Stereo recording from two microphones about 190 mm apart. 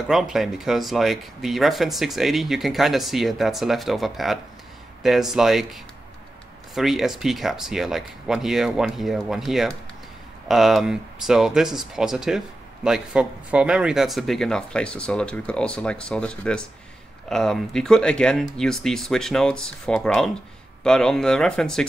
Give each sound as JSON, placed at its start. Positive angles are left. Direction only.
{"t": 0.1, "sound": "speech", "side_deg": 0}